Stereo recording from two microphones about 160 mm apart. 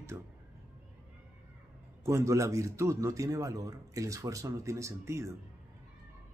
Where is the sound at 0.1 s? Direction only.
15° right (ahead or behind).